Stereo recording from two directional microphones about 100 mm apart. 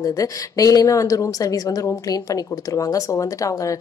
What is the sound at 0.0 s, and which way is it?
Speech, 35° left (ahead or behind).